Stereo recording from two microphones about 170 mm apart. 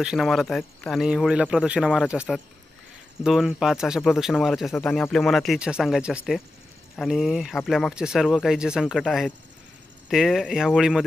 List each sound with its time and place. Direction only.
0.0 s speech: centre (ahead or behind)